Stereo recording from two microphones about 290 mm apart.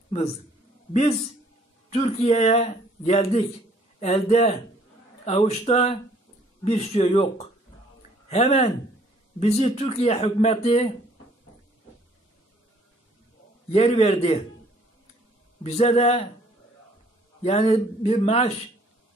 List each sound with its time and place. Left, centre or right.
1.9 s a man's voice: left
13.7 s a man's voice: left
15.6 s a man's voice: left
17.4 s a man's voice: centre